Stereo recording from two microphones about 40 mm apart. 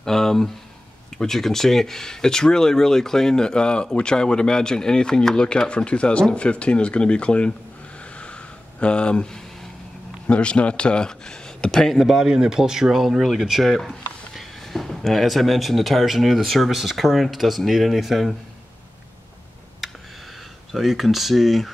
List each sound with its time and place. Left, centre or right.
0.0 s speech: centre; by 7.5 s left
8.2 s a sound: left
10.2 s speech: left
12.0 s a man's voice: centre
19.8 s a sound: centre
20.7 s speech: centre